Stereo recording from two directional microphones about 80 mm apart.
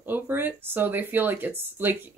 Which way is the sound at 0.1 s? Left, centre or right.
Right.